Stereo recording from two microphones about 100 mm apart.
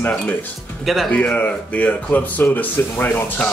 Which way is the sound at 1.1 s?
15° left (ahead or behind).